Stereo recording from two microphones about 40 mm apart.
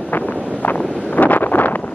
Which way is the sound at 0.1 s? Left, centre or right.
Left.